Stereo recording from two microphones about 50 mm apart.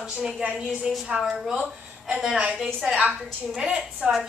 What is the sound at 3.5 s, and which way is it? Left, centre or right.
Speech, centre.